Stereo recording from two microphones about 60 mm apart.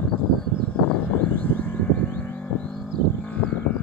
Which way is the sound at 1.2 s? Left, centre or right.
Left.